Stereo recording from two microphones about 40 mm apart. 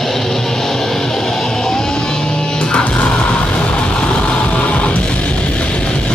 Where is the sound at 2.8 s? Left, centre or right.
Left.